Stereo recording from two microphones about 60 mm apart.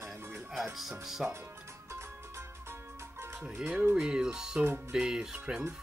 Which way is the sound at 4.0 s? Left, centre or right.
Centre.